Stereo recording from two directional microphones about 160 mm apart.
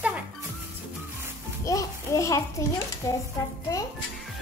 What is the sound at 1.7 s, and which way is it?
A child's voice, 20° left (ahead or behind).